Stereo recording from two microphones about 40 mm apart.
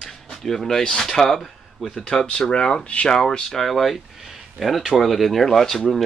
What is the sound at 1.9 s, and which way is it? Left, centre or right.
Speech, centre.